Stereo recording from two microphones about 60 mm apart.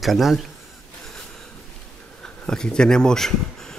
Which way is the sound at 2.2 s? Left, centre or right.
Centre.